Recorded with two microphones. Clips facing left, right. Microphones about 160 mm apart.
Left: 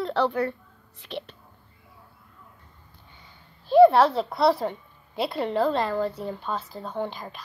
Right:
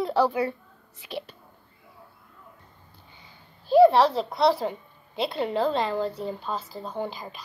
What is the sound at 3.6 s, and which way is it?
Speech, centre (ahead or behind).